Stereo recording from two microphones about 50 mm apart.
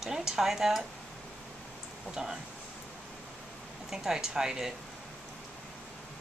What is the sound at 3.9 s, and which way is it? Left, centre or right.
Speech, centre.